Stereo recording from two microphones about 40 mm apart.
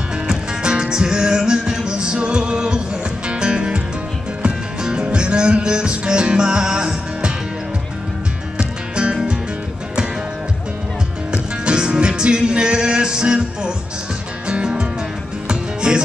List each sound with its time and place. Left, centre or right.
0.3 s music: right
8.5 s music: right
11.3 s music: right